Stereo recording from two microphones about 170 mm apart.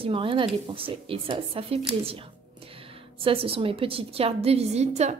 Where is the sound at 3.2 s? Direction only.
35° right (ahead or behind).